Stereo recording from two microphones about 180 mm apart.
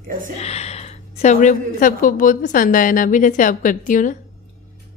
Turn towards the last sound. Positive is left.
turn(degrees=45)  # may be behind; listen again after turning